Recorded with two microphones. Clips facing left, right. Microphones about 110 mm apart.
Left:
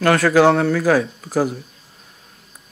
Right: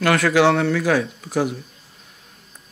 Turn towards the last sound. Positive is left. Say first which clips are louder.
# left 2 dB
turn(degrees=40)  # may be behind; listen again after turning